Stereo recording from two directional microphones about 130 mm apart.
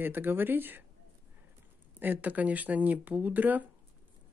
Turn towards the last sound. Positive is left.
turn(degrees=-15)  # may be behind; listen again after turning